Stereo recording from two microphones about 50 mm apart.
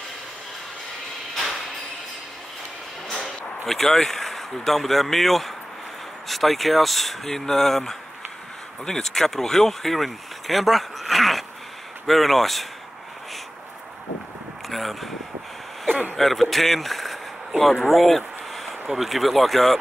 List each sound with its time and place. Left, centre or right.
1.3 s a sound: centre
3.6 s speech: centre
14.7 s speech: centre
16.2 s speech: centre